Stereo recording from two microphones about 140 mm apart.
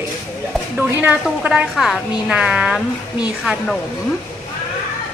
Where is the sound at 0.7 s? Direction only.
15° right (ahead or behind).